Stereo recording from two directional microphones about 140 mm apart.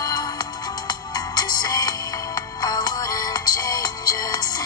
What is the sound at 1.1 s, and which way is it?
Music, 30° left (ahead or behind).